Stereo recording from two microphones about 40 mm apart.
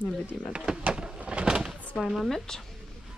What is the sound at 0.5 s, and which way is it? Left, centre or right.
Speech, right.